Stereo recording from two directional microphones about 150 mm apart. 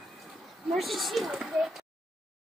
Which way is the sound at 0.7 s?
Centre (ahead or behind).